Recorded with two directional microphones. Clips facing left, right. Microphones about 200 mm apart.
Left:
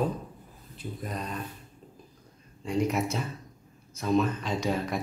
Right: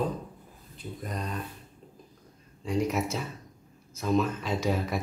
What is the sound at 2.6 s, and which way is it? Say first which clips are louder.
Speech: left 1 dB; centre (ahead or behind).